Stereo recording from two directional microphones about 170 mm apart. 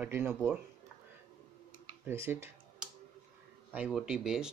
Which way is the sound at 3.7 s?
5° right (ahead or behind).